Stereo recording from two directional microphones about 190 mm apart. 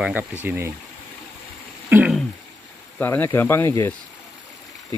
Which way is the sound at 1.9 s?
10° right (ahead or behind).